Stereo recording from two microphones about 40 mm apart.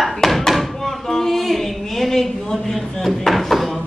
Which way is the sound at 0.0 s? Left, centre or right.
Centre.